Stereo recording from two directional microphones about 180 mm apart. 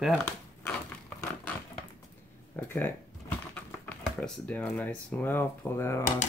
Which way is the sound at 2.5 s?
10° left (ahead or behind).